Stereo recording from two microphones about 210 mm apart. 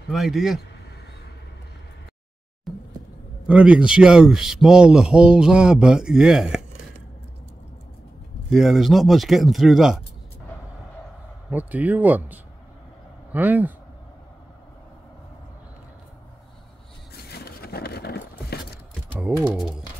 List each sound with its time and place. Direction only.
0.1 s a man's voice: centre (ahead or behind)
2.7 s a sound: centre (ahead or behind)
3.4 s a man's voice: 5° right (ahead or behind)
8.5 s a man's voice: centre (ahead or behind)
11.5 s speech: 5° right (ahead or behind)
17.1 s a sound: 50° left (ahead or behind)
19.1 s speech: 10° right (ahead or behind)